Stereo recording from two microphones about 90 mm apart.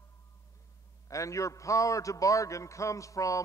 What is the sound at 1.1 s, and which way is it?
A man's voice, 35° left (ahead or behind).